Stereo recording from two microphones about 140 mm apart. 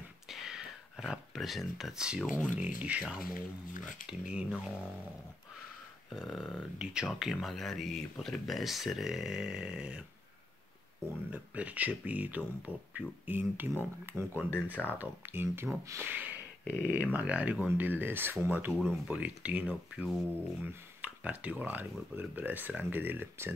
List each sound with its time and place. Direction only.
0.3 s a sound: 5° right (ahead or behind)
2.4 s speech: 10° right (ahead or behind)
3.2 s speech: 85° left
4.2 s speech: 5° right (ahead or behind)
6.0 s speech: centre (ahead or behind)
11.3 s speech: 10° right (ahead or behind)
14.5 s speech: 15° left (ahead or behind)
15.0 s speech: 15° right (ahead or behind)